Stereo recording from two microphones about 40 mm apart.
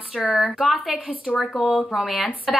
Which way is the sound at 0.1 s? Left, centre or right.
Centre.